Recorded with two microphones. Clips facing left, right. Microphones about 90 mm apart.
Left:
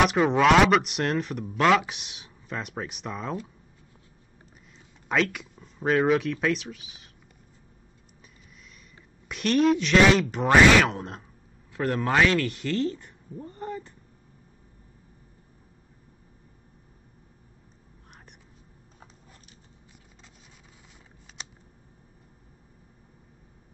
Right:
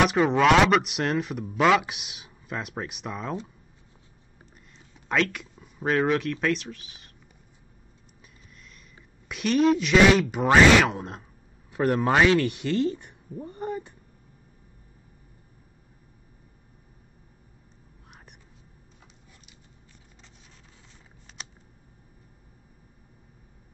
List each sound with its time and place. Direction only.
0.0 s speech: centre (ahead or behind)
4.7 s speech: 5° left (ahead or behind)
9.3 s speech: centre (ahead or behind)
11.7 s speech: 15° right (ahead or behind)
21.4 s a sound: centre (ahead or behind)